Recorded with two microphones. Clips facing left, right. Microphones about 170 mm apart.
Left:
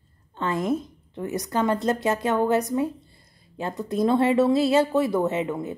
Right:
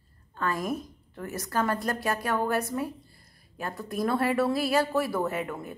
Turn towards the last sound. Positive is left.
turn(degrees=20)  # may be behind; listen again after turning